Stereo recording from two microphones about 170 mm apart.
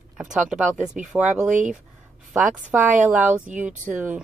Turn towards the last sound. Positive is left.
turn(degrees=-10)  # may be behind; listen again after turning